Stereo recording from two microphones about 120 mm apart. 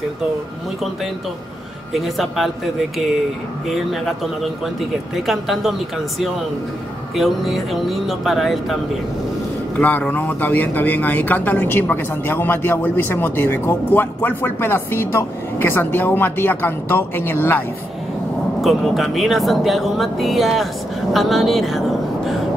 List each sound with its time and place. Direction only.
2.0 s speech: centre (ahead or behind)
3.6 s speech: centre (ahead or behind)
9.8 s speech: 15° left (ahead or behind)
18.6 s a woman's voice: centre (ahead or behind)